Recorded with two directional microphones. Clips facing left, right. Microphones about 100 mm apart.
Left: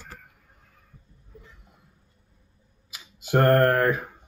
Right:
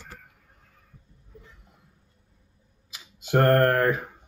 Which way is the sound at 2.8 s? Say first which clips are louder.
Left 1 dB; 10° left (ahead or behind).